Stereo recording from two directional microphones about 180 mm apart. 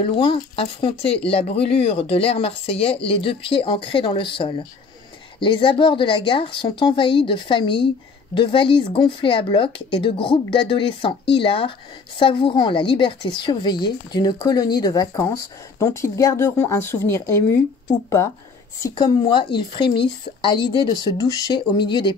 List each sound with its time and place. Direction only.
0.0 s a woman's voice: 30° left (ahead or behind); by 17.6 s 15° left (ahead or behind)
18.8 s a woman's voice: 20° left (ahead or behind)